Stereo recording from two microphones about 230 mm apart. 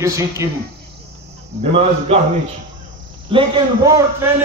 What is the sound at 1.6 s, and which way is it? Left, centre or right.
A man's voice, right.